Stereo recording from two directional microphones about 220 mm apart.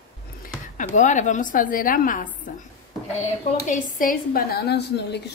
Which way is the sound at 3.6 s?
35° left (ahead or behind).